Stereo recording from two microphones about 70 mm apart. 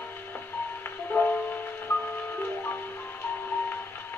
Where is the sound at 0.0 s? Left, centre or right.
Left.